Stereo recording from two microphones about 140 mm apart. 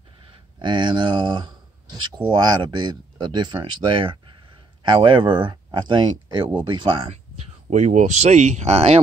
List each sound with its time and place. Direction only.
0.6 s speech: 35° right (ahead or behind)
7.7 s speech: 55° right (ahead or behind)